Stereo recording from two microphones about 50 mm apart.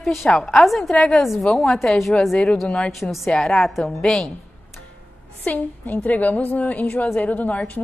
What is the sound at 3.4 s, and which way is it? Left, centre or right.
Speech, centre.